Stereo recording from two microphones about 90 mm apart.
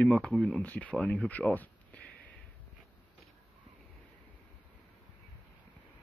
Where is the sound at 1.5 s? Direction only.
20° left (ahead or behind).